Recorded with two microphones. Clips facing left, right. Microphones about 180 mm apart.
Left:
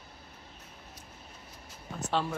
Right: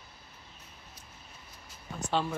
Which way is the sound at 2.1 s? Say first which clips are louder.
Even; centre (ahead or behind).